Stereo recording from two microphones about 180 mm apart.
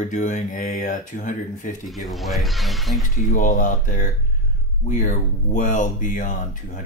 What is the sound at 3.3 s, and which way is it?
Speech, 45° left (ahead or behind).